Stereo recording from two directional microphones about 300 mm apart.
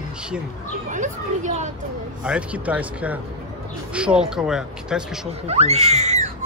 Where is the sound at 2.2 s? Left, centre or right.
Centre.